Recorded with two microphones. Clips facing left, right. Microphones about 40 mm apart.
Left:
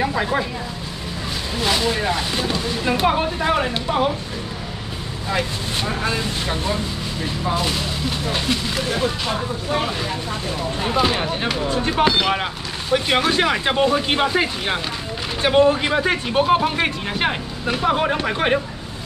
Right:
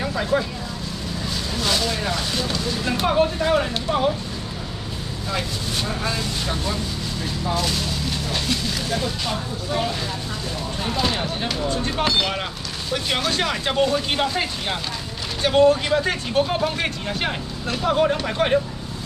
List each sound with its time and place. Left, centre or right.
0.0 s speech: centre
1.6 s speech: left
5.3 s speech: left
10.8 s speech: left